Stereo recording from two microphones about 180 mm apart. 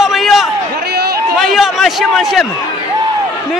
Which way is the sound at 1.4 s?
Centre (ahead or behind).